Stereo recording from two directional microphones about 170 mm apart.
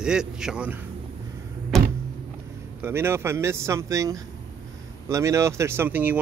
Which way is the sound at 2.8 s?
15° right (ahead or behind).